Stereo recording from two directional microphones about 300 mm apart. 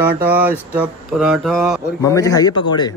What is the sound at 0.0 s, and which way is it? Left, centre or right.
Mantra, centre.